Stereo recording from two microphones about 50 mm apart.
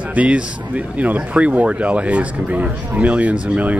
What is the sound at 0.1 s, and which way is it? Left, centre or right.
Speech, right.